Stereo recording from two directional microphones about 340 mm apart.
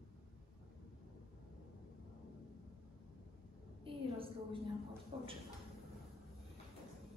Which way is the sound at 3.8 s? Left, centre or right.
Centre.